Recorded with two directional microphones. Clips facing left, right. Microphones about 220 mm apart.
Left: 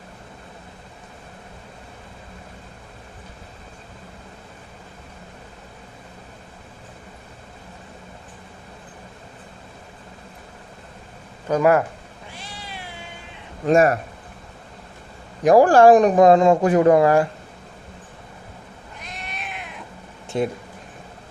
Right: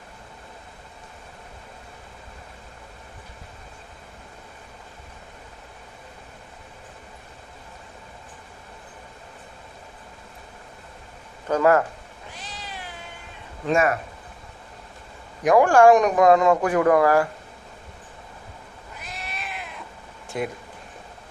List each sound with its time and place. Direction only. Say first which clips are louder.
11.4 s speech: left 1 dB; 15° left (ahead or behind)
12.4 s cat: left 1 dB; 10° left (ahead or behind)
13.7 s speech: left 5 dB; 40° left (ahead or behind)
15.4 s speech: left 3 dB; 35° left (ahead or behind)
18.9 s cat: even; 5° right (ahead or behind)
20.3 s speech: left 5 dB; 30° left (ahead or behind)